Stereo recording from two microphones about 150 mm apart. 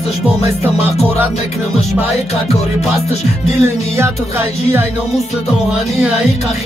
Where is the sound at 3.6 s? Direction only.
15° right (ahead or behind).